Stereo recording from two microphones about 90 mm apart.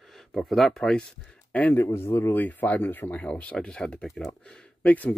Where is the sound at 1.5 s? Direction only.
20° left (ahead or behind).